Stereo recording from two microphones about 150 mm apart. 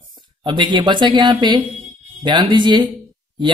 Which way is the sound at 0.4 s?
30° right (ahead or behind).